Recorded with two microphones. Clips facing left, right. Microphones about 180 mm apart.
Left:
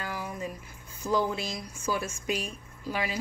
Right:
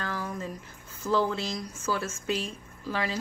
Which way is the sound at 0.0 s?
15° left (ahead or behind).